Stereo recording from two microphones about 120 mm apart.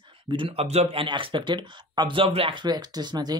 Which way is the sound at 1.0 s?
40° right (ahead or behind).